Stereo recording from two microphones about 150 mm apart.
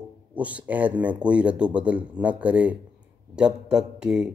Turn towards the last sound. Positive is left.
turn(degrees=-5)  # may be behind; listen again after turning